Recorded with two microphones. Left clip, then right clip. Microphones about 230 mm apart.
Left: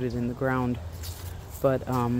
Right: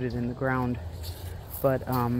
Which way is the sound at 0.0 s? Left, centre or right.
Centre.